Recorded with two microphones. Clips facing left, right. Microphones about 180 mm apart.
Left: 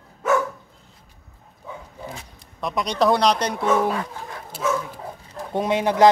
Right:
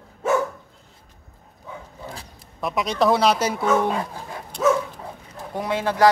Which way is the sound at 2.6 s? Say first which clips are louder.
Even; centre (ahead or behind).